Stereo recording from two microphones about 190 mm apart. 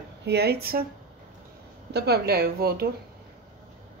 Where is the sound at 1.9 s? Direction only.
55° right (ahead or behind).